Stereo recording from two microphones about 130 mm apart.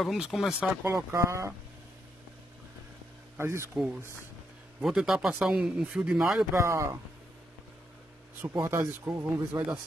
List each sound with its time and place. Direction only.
0.0 s speech: centre (ahead or behind)
1.1 s speech: 25° right (ahead or behind)
3.3 s speech: 20° right (ahead or behind)
3.7 s speech: 5° right (ahead or behind)
6.5 s speech: 20° right (ahead or behind)
8.4 s speech: 15° right (ahead or behind)